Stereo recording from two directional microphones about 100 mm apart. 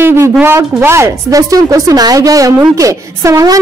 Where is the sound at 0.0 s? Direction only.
25° right (ahead or behind).